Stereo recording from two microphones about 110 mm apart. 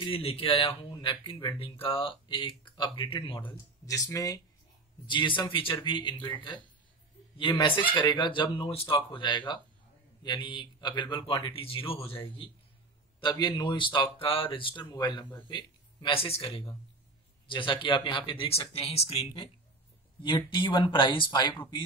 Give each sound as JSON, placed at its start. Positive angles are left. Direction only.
{"t": 0.0, "sound": "a man's voice", "side_deg": 60}
{"t": 3.8, "sound": "speech", "side_deg": 30}
{"t": 5.0, "sound": "a man's voice", "side_deg": 45}
{"t": 13.2, "sound": "a man's voice", "side_deg": 45}
{"t": 17.5, "sound": "a man's voice", "side_deg": 50}